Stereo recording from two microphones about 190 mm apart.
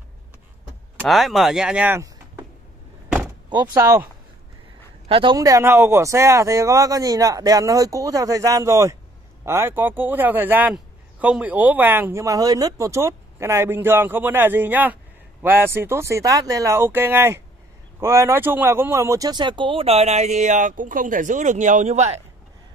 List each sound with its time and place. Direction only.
1.0 s speech: centre (ahead or behind)
3.4 s speech: 20° right (ahead or behind)
5.0 s speech: 25° right (ahead or behind)